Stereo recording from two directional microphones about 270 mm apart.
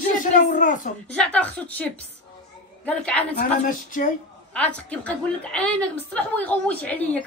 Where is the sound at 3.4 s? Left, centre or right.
Left.